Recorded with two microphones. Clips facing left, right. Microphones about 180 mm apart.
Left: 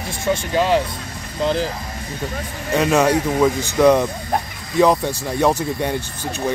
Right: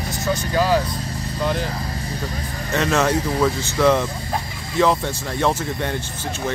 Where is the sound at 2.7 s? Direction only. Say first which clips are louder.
Left 3 dB; 10° left (ahead or behind).